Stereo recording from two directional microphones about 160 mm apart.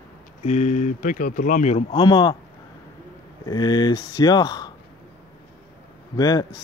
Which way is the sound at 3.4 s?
25° left (ahead or behind).